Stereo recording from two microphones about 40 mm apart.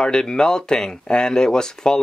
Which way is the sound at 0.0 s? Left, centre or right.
Centre.